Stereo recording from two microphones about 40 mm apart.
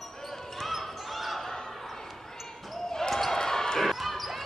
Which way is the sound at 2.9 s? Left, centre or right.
Centre.